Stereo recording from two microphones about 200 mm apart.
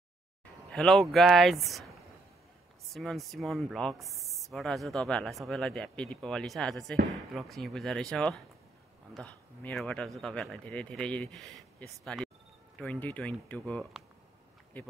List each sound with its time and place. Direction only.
0.7 s speech: centre (ahead or behind)